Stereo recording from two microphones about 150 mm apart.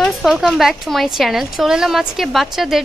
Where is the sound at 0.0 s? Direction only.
Centre (ahead or behind).